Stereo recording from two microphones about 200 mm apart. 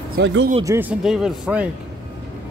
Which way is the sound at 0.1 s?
60° right (ahead or behind).